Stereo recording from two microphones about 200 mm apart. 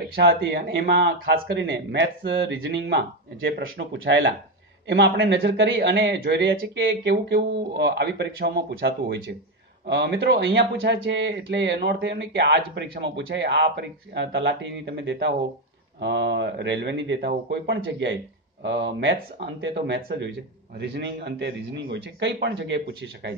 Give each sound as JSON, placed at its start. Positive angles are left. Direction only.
{"t": 0.1, "sound": "speech", "side_deg": -60}
{"t": 3.9, "sound": "speech", "side_deg": -65}